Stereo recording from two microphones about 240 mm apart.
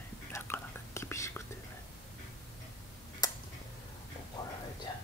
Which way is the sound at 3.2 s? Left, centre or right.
Centre.